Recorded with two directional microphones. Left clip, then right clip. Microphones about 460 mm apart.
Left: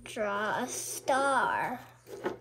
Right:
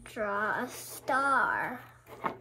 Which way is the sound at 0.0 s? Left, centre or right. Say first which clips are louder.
Even; left.